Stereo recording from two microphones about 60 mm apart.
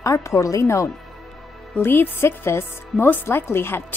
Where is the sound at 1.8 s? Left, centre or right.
Left.